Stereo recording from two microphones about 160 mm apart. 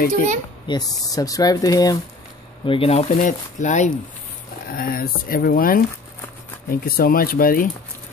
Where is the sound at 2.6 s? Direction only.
35° left (ahead or behind).